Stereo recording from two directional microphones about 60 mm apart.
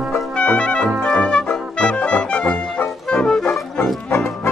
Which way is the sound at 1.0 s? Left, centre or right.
Centre.